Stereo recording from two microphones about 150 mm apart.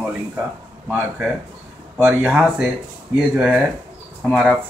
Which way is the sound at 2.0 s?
15° right (ahead or behind).